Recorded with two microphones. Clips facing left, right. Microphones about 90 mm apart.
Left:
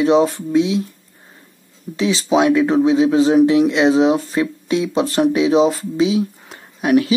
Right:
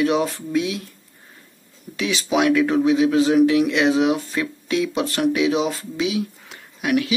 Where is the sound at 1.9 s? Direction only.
30° left (ahead or behind).